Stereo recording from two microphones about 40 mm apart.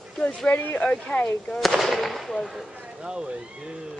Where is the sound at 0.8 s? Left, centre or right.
Left.